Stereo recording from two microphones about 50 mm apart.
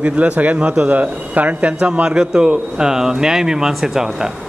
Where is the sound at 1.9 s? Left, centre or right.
Right.